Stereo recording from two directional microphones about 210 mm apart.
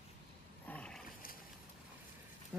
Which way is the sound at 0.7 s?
5° left (ahead or behind).